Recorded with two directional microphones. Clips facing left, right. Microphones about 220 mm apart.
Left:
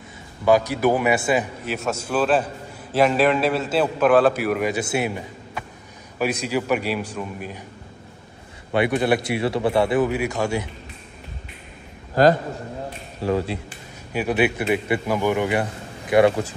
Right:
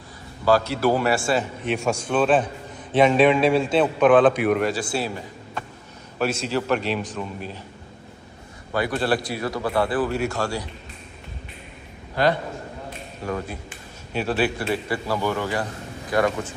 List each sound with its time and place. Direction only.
0.5 s speech: 15° left (ahead or behind)
1.6 s a man's voice: 5° left (ahead or behind)
4.7 s a man's voice: 20° left (ahead or behind)
6.1 s speech: 15° left (ahead or behind)
8.7 s a man's voice: 20° left (ahead or behind)
14.1 s a man's voice: 15° left (ahead or behind)